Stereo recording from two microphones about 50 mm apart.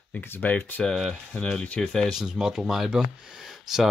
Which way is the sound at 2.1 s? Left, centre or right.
Centre.